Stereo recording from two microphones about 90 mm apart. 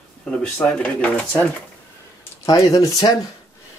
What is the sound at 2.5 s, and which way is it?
Speech, 45° left (ahead or behind).